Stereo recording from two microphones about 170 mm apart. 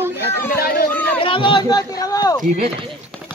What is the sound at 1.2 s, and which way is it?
Speech, 30° left (ahead or behind).